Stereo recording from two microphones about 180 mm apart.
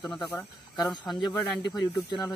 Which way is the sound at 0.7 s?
25° left (ahead or behind).